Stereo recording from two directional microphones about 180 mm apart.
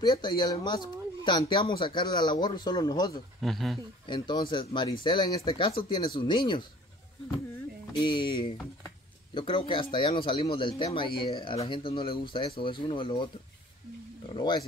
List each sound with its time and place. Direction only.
0.0 s speech: 25° left (ahead or behind)
3.3 s speech: centre (ahead or behind)
4.0 s speech: 25° left (ahead or behind)
8.0 s speech: 25° left (ahead or behind)
14.3 s speech: 25° left (ahead or behind)